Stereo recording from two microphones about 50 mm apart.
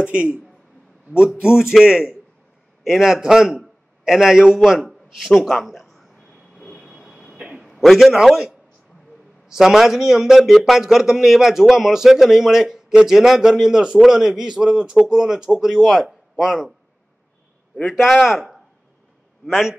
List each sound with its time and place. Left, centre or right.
0.0 s speech: right
1.1 s a man's voice: centre
4.6 s a sound: centre
6.8 s vehicle: centre
7.3 s a sound: centre
7.6 s a man's voice: centre
9.5 s a man's voice: centre
17.9 s a man's voice: centre